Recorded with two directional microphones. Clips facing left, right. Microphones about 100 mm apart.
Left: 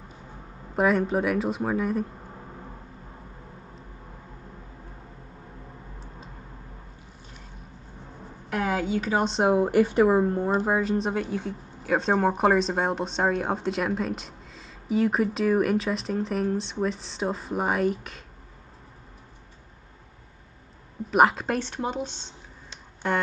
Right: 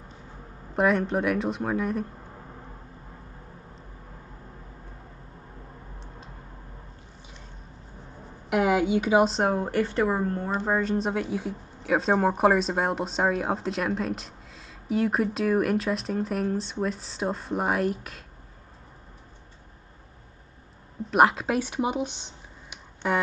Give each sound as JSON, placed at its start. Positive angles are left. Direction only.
{"t": 0.7, "sound": "speech", "side_deg": 0}
{"t": 5.9, "sound": "a sound", "side_deg": 0}
{"t": 8.5, "sound": "a sound", "side_deg": -15}
{"t": 9.2, "sound": "speech", "side_deg": 0}
{"t": 10.6, "sound": "speech", "side_deg": 5}
{"t": 21.1, "sound": "speech", "side_deg": 0}